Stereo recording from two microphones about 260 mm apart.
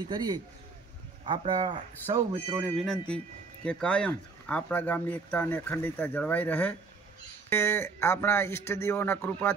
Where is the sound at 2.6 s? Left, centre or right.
Centre.